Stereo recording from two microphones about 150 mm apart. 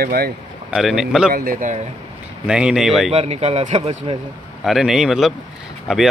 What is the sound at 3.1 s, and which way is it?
Speech, 45° right (ahead or behind).